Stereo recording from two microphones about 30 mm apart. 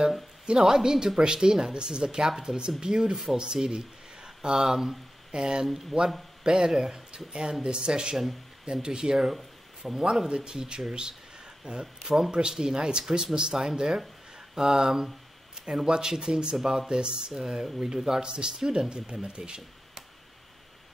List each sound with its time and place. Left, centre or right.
0.6 s speech: centre
10.3 s speech: right
11.8 s speech: centre
12.3 s speech: right
15.6 s speech: right